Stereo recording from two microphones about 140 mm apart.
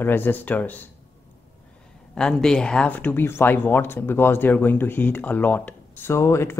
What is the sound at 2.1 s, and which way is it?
Speech, 5° left (ahead or behind).